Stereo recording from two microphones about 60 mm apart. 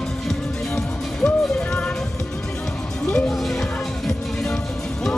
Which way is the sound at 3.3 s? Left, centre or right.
Centre.